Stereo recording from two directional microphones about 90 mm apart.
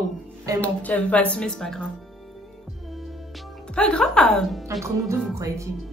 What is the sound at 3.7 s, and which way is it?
Speech, 10° left (ahead or behind).